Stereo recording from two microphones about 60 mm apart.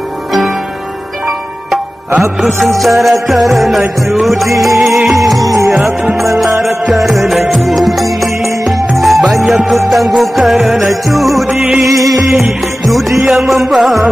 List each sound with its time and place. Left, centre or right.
1.7 s music: centre
5.4 s music: right
6.2 s music: centre